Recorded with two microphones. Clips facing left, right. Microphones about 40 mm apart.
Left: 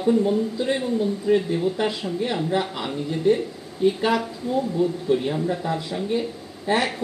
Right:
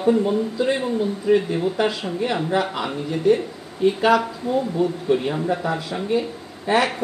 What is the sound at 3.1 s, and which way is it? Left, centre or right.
Speech, right.